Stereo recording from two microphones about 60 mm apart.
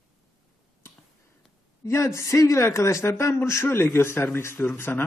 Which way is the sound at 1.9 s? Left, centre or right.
Left.